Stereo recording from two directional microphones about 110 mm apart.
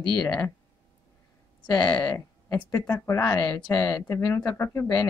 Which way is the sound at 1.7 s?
35° left (ahead or behind).